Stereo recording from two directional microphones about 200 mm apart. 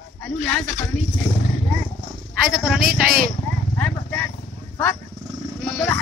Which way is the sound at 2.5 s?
Centre (ahead or behind).